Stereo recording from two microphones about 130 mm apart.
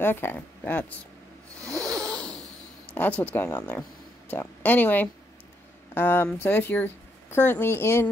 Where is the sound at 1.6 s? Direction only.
25° right (ahead or behind).